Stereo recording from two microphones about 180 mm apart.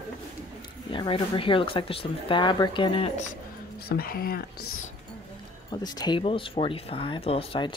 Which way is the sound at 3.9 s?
55° left (ahead or behind).